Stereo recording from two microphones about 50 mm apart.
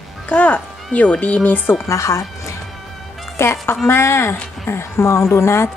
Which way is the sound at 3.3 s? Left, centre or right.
Left.